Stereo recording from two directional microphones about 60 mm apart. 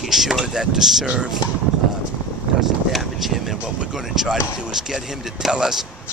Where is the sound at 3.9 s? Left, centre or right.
Centre.